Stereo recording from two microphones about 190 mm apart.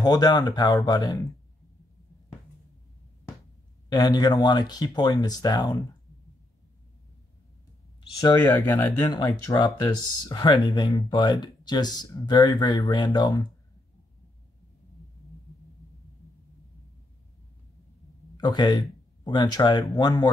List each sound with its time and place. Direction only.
0.0 s speech: 20° left (ahead or behind)
3.9 s speech: 20° left (ahead or behind)
8.5 s speech: 15° left (ahead or behind)
18.4 s speech: 20° left (ahead or behind)